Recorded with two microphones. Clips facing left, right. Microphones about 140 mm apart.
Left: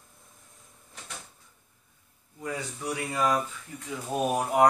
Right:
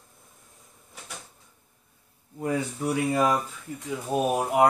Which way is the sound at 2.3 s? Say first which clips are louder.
Right 7 dB; 50° right (ahead or behind).